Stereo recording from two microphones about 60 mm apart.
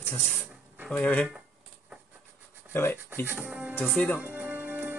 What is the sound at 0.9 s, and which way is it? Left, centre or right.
Speech, left.